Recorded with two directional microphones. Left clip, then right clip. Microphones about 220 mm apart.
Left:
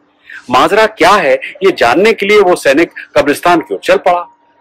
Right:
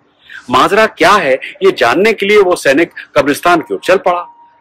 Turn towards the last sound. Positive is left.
turn(degrees=-10)  # may be behind; listen again after turning